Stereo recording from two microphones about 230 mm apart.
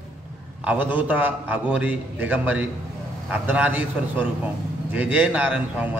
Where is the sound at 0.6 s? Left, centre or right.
Centre.